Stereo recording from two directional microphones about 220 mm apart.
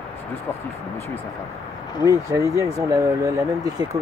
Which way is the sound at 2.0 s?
15° right (ahead or behind).